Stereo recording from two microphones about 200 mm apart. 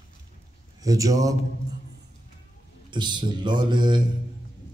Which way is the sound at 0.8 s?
15° right (ahead or behind).